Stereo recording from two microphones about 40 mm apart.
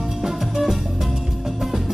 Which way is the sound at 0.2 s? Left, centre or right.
Centre.